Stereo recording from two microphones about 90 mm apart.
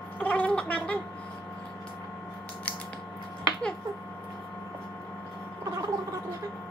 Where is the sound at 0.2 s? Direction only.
15° left (ahead or behind).